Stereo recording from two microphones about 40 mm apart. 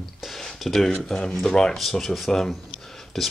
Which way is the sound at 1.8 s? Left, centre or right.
Centre.